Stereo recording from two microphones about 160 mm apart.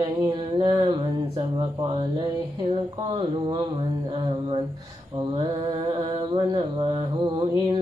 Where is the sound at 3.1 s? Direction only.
35° right (ahead or behind).